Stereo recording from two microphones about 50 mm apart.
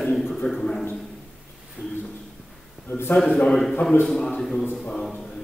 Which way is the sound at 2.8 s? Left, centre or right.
Left.